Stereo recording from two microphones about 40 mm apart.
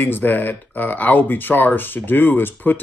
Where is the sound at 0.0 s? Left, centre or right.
Left.